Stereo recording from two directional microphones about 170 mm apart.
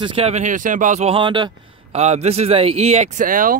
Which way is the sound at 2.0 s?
40° right (ahead or behind).